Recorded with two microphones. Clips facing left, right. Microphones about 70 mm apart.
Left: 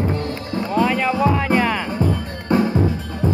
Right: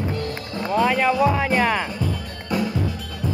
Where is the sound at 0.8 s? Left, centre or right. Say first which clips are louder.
Even; centre.